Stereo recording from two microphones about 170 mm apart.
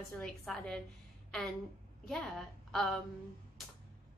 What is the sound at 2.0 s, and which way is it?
Speech, centre (ahead or behind).